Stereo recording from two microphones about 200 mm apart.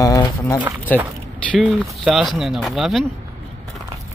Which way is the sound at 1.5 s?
Centre (ahead or behind).